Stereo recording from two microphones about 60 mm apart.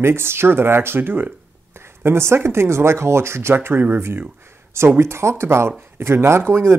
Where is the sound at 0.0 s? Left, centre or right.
Right.